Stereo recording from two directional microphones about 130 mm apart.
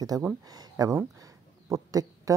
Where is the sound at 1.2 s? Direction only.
25° right (ahead or behind).